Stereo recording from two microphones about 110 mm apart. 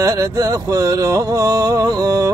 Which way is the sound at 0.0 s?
30° right (ahead or behind).